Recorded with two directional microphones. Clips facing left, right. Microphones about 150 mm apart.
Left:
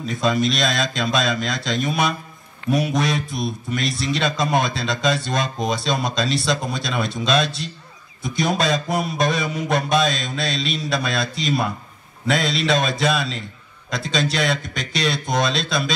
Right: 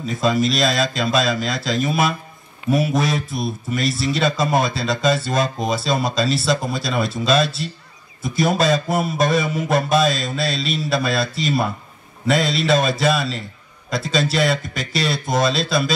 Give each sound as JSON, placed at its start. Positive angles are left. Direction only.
{"t": 0.0, "sound": "speech", "side_deg": 0}